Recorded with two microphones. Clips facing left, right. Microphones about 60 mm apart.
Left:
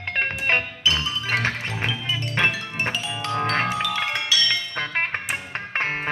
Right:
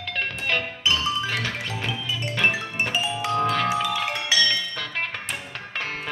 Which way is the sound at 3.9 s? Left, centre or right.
Left.